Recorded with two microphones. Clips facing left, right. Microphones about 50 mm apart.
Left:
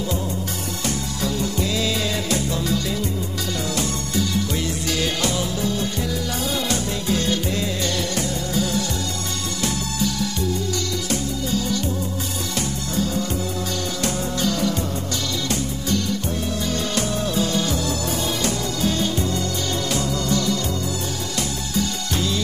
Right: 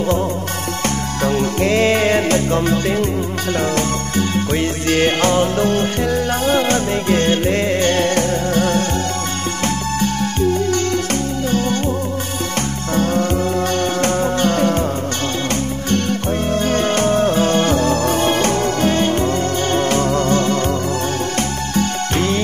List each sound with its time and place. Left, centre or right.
1.2 s music: right
9.9 s music: right
12.9 s music: right
15.9 s music: right
21.7 s music: right